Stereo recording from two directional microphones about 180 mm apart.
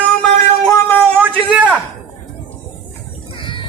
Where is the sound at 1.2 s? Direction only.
10° right (ahead or behind).